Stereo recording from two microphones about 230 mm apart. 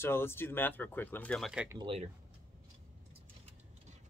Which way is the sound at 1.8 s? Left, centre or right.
Right.